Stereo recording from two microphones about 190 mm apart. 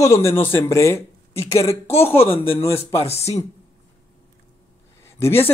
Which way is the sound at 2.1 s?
30° left (ahead or behind).